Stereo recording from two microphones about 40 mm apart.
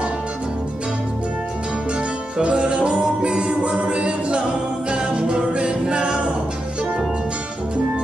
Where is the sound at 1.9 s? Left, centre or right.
Right.